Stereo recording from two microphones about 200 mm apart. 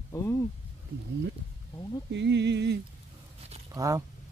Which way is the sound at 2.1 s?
60° right (ahead or behind).